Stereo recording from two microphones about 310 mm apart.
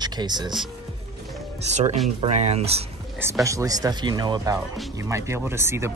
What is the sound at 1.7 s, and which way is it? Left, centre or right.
Speech, right.